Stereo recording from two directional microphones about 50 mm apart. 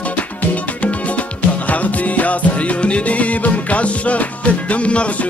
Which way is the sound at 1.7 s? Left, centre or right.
Left.